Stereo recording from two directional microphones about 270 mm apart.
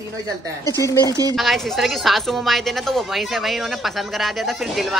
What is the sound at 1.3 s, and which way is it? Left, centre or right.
A woman's voice, centre.